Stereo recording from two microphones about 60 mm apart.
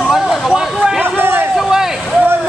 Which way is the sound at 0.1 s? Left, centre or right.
Centre.